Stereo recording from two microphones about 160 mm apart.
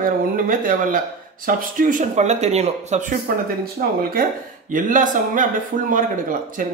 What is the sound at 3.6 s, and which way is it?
Speech, 65° right (ahead or behind).